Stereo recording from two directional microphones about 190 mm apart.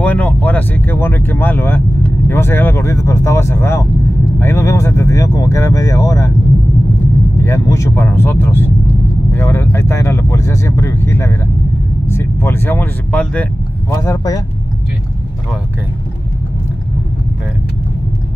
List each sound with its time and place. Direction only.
0.0 s speech: 10° left (ahead or behind)
7.4 s speech: 15° left (ahead or behind)
13.9 s speech: 20° left (ahead or behind)